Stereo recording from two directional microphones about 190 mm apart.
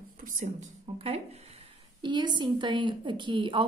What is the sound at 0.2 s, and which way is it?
Speech, 45° right (ahead or behind).